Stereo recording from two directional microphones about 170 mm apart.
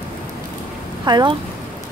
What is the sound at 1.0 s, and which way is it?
Speech, 25° right (ahead or behind).